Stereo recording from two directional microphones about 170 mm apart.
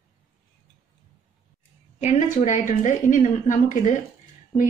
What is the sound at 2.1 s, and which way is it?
A woman's voice, 45° left (ahead or behind).